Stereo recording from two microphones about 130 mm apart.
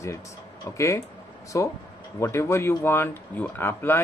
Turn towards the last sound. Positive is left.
turn(degrees=15)  # may be behind; listen again after turning